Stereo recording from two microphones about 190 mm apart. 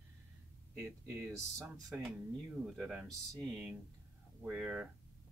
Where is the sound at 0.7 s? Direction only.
15° right (ahead or behind).